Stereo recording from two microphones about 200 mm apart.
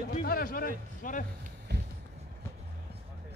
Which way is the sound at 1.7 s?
55° right (ahead or behind).